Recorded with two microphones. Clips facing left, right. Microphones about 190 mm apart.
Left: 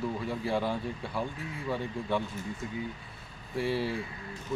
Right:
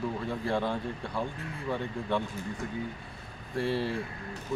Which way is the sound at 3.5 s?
5° left (ahead or behind).